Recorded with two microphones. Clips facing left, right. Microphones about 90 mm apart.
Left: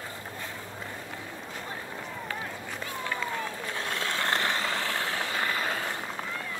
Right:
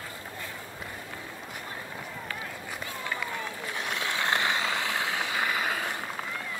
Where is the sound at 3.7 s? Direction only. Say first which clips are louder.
Right 1 dB; 15° right (ahead or behind).